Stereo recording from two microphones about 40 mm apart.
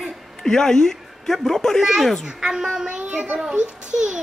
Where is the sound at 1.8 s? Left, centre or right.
Centre.